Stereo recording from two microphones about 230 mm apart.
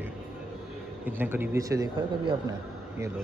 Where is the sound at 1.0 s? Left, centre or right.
Centre.